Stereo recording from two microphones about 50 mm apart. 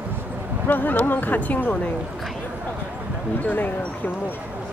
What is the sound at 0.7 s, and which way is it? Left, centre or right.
Speech, left.